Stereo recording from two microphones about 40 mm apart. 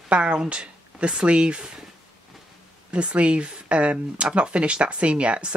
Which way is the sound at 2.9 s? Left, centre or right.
Right.